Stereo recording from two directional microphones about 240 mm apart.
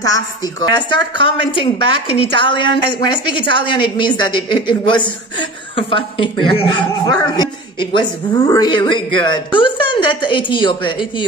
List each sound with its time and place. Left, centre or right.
0.0 s a woman's voice: centre